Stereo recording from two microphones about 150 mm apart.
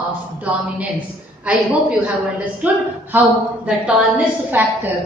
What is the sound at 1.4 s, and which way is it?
Speech, 10° right (ahead or behind).